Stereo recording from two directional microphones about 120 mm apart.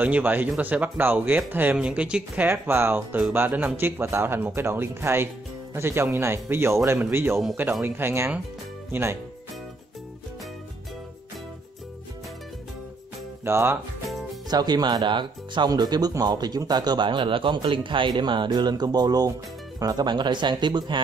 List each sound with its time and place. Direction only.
0.0 s speech: 15° right (ahead or behind)
13.4 s speech: 20° right (ahead or behind)
14.5 s speech: 35° right (ahead or behind)